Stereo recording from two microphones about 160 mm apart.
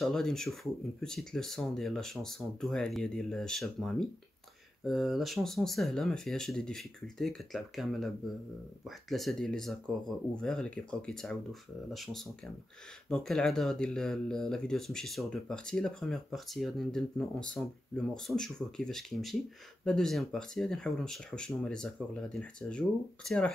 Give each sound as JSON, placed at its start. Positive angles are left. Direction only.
{"t": 0.0, "sound": "speech", "side_deg": 5}